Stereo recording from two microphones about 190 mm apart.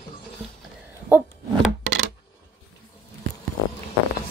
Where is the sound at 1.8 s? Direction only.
90° right.